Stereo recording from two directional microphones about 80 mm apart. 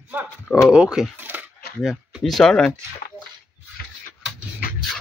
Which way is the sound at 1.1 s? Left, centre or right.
Right.